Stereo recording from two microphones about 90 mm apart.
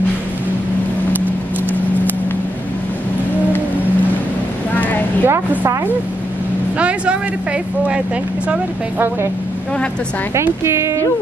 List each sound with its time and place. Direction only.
5.2 s a woman's voice: 20° right (ahead or behind)
6.8 s speech: 15° right (ahead or behind)
10.3 s speech: 30° right (ahead or behind)